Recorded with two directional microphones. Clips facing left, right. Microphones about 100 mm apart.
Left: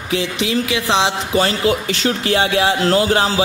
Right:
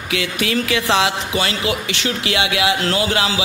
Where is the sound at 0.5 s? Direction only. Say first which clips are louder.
Right 1 dB; 20° left (ahead or behind).